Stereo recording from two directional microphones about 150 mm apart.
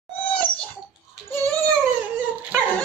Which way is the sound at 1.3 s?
15° left (ahead or behind).